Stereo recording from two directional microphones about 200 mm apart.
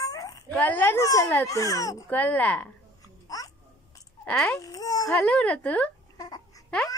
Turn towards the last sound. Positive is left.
turn(degrees=5)  # may be behind; listen again after turning